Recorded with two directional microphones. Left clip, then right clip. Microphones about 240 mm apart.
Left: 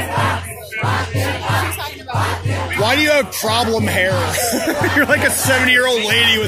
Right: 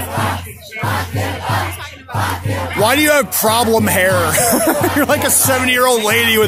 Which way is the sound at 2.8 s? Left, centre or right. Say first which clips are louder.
Right 2 dB; right.